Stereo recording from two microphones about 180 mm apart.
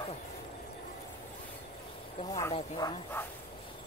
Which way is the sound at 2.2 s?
20° left (ahead or behind).